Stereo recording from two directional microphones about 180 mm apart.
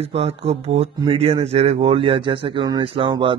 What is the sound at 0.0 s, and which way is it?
A man's voice, 35° right (ahead or behind).